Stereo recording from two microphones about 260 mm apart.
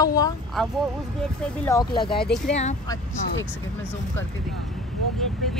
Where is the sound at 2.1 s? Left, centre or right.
Left.